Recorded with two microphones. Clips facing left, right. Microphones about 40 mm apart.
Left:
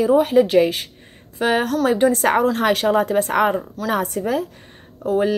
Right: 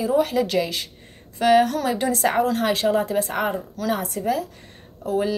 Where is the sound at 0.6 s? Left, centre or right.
Left.